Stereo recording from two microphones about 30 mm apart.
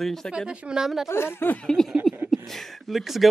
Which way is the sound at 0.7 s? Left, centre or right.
Right.